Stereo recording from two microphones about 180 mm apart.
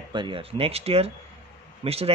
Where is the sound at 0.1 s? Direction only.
25° right (ahead or behind).